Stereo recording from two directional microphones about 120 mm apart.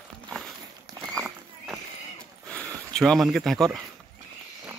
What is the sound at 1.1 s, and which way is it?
Horse, centre (ahead or behind).